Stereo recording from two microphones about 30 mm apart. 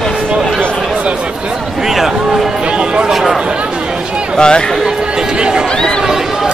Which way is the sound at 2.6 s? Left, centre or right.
Right.